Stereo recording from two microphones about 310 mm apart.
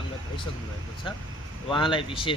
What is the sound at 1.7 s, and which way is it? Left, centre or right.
Speech, centre.